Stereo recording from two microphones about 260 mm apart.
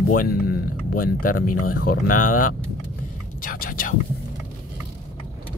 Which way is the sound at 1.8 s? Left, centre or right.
Left.